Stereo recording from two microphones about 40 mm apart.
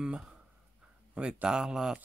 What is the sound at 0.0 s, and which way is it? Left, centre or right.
Speech, right.